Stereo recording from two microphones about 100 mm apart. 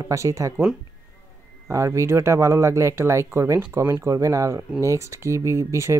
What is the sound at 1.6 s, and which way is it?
Speech, 30° right (ahead or behind).